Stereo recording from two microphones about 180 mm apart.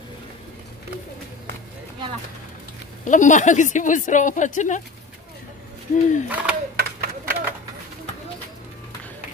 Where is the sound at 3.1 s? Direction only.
45° left (ahead or behind).